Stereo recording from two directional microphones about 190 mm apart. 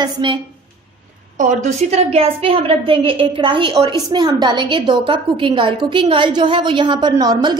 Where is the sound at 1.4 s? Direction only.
40° right (ahead or behind).